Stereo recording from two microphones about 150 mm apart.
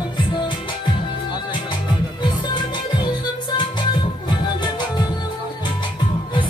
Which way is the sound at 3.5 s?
30° left (ahead or behind).